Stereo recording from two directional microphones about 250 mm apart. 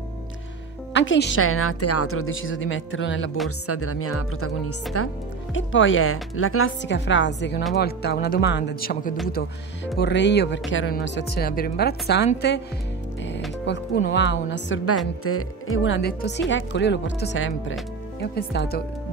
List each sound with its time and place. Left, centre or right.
0.9 s speech: left
3.4 s a woman's voice: left
13.9 s a woman's voice: left